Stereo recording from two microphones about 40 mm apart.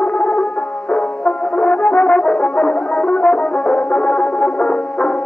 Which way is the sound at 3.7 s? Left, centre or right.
Left.